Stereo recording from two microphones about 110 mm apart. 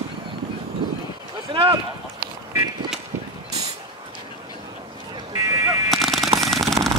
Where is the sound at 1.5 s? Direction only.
50° right (ahead or behind).